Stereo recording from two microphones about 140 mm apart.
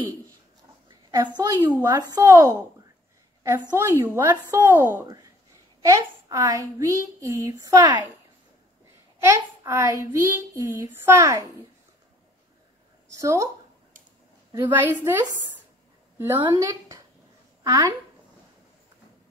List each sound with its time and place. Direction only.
0.8 s a sound: 30° right (ahead or behind)
1.8 s a child's voice: 30° right (ahead or behind)
5.0 s a child's voice: 30° right (ahead or behind)
9.3 s a child's voice: 20° right (ahead or behind)
13.1 s speech: 20° right (ahead or behind)
14.5 s a woman's voice: 15° right (ahead or behind)
16.3 s a child's voice: 30° right (ahead or behind)